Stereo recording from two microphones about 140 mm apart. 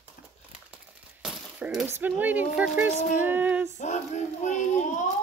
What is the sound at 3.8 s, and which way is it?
Speech, 60° left (ahead or behind).